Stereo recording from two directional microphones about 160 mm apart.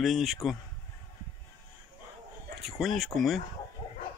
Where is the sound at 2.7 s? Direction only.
Centre (ahead or behind).